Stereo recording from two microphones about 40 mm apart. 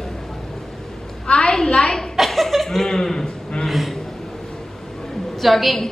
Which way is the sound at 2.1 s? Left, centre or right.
Centre.